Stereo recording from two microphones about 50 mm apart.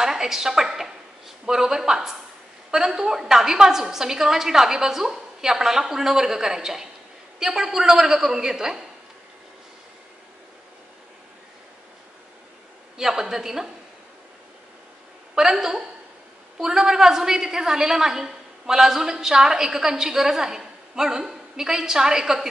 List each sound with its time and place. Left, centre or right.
0.0 s a sound: centre
1.4 s a woman's voice: centre
12.9 s a woman's voice: centre
15.3 s a woman's voice: centre